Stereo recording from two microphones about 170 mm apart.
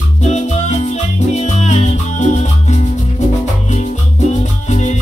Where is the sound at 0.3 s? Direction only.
40° left (ahead or behind).